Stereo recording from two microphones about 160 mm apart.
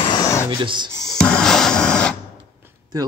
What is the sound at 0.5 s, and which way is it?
Speech, 30° right (ahead or behind).